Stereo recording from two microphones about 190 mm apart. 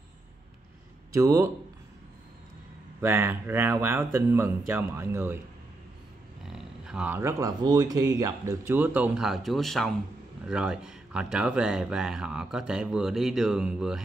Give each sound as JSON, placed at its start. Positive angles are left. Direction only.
{"t": 1.1, "sound": "speech", "side_deg": -15}
{"t": 3.0, "sound": "speech", "side_deg": -10}
{"t": 6.4, "sound": "speech", "side_deg": 0}